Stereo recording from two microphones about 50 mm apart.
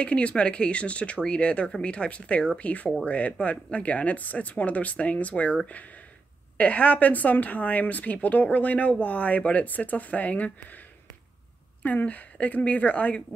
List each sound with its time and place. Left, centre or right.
0.0 s speech: left
6.6 s speech: left
11.8 s speech: left